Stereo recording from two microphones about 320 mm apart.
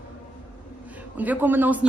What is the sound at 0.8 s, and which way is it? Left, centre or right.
A man's voice, centre.